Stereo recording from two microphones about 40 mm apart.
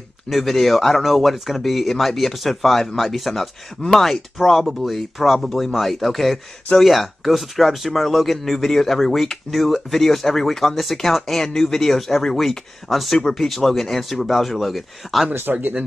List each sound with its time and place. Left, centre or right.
0.3 s speech: centre
15.5 s speech: right